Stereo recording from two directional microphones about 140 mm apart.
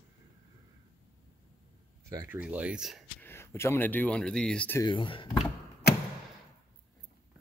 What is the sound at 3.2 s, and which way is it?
Speech, 15° left (ahead or behind).